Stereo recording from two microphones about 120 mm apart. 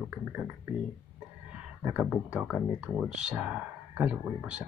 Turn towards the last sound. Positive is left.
turn(degrees=-10)  # may be behind; listen again after turning